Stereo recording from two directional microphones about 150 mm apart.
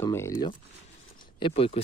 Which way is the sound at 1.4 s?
40° left (ahead or behind).